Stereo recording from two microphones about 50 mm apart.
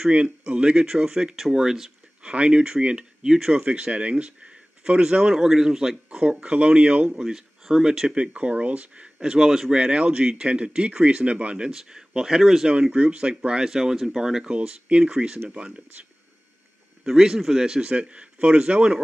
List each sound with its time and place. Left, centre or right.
0.1 s a man's voice: right; by 1.9 s centre
2.2 s speech: right
3.7 s speech: right
7.1 s a man's voice: centre
8.2 s speech: right; by 12.6 s centre
12.9 s a man's voice: right
17.0 s a man's voice: centre